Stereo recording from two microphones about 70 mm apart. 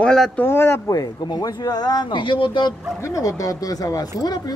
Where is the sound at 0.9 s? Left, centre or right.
Left.